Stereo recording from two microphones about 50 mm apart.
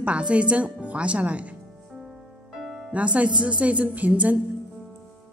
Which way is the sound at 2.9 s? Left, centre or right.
Right.